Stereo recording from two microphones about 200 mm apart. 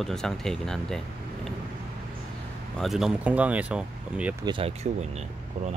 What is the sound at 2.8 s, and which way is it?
Speech, centre (ahead or behind).